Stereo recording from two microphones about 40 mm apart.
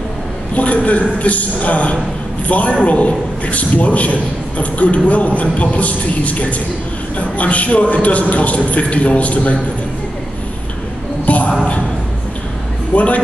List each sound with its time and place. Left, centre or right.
0.6 s a man's voice: left
11.2 s a sound: left
12.9 s a man's voice: left